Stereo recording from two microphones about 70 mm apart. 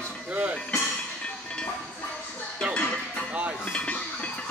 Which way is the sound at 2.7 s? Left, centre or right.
Centre.